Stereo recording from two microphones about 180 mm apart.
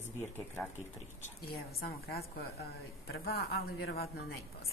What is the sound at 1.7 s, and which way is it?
Speech, 60° left (ahead or behind).